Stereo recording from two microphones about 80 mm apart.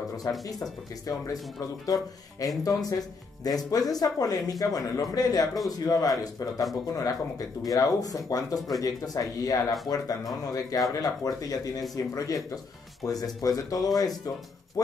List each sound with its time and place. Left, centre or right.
0.5 s speech: left
8.5 s speech: centre
8.8 s speech: left